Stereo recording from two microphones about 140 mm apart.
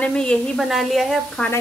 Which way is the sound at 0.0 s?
5° left (ahead or behind).